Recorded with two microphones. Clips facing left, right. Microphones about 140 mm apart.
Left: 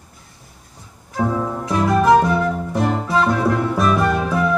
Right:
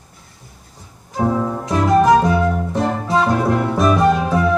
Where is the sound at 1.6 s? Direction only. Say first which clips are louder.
Right 2 dB; 20° right (ahead or behind).